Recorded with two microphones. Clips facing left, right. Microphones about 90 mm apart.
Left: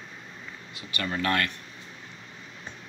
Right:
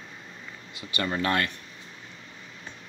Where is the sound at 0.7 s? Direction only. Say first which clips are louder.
Right 2 dB; 20° right (ahead or behind).